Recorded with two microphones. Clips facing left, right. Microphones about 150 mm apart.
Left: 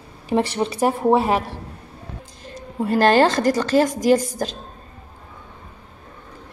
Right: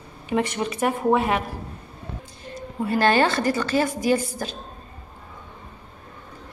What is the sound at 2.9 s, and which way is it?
A woman's voice, 40° left (ahead or behind).